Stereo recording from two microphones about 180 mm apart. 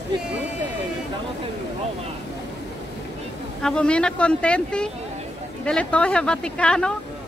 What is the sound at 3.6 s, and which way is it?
Speech, 5° left (ahead or behind).